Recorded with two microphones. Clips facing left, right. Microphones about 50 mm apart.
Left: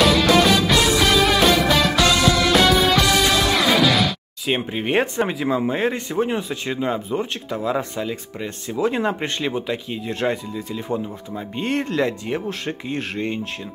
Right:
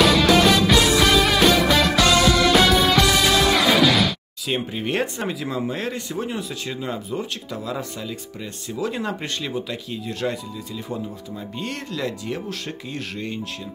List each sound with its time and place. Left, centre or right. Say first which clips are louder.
0.0 s music: even; centre
4.5 s speech: left 3 dB; left